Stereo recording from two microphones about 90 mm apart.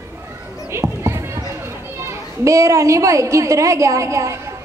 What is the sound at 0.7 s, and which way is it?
Children playing, 30° right (ahead or behind).